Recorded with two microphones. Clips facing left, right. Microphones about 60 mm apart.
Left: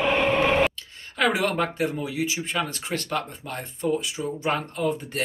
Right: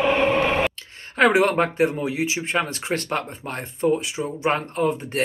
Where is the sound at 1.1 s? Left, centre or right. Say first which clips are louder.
Right 6 dB; right.